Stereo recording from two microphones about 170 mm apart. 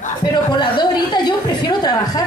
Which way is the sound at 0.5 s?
25° left (ahead or behind).